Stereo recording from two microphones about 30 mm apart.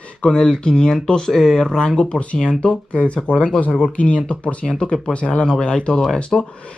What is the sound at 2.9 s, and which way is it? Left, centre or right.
Speech, left.